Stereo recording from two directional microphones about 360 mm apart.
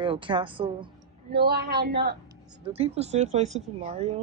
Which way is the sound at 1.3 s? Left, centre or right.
Right.